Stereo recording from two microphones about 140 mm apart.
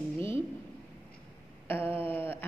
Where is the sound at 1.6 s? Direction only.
15° left (ahead or behind).